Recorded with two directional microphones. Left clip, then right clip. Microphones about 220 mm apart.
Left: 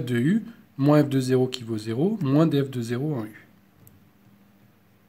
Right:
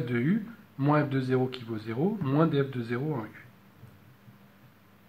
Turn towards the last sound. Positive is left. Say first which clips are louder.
# left 3 dB
turn(degrees=55)  # may be behind; listen again after turning